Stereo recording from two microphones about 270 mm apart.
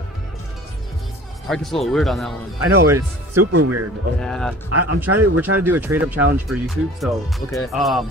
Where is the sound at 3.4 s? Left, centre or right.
Right.